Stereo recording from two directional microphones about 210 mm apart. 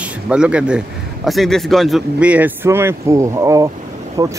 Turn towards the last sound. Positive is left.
turn(degrees=-15)  # may be behind; listen again after turning